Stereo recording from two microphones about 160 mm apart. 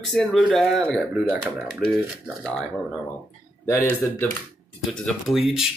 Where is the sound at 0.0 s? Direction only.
Centre (ahead or behind).